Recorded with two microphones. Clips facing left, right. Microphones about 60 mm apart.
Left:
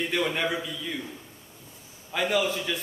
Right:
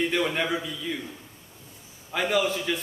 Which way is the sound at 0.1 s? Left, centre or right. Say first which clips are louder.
Right 1 dB; centre.